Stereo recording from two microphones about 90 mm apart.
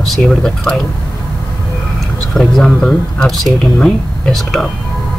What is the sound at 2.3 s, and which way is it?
Speech, 5° left (ahead or behind).